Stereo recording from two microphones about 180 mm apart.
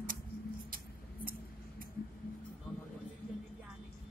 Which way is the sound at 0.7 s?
55° right (ahead or behind).